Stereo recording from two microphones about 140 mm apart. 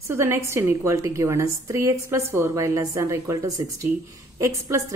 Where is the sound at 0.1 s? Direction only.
15° right (ahead or behind).